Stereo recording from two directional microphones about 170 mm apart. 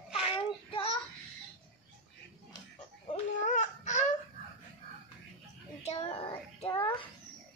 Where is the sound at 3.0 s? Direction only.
45° left (ahead or behind).